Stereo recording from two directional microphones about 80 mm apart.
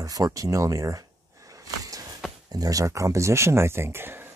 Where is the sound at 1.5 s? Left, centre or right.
Right.